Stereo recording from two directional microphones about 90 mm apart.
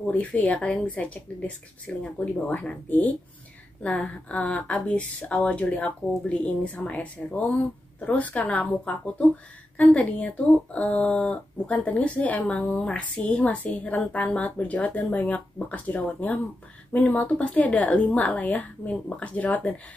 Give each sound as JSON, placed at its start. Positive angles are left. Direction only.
{"t": 0.0, "sound": "speech", "side_deg": 15}